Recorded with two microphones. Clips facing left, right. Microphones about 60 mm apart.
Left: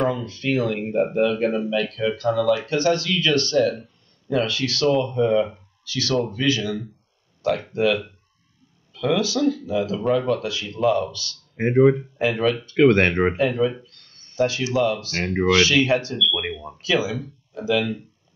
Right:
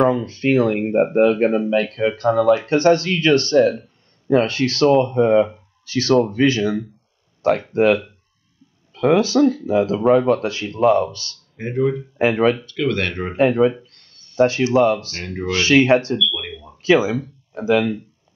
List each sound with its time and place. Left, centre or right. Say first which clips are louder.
0.0 s speech: right 6 dB; right
11.5 s speech: left 6 dB; left
12.2 s speech: right 5 dB; right
12.6 s speech: left 6 dB; left
13.4 s speech: right 5 dB; right
15.0 s speech: left 5 dB; left
15.6 s speech: right 5 dB; right
16.2 s speech: even; left
16.8 s speech: right 7 dB; right